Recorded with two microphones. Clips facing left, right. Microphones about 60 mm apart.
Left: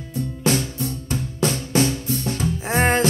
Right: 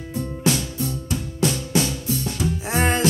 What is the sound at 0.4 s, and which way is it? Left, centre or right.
Music, left.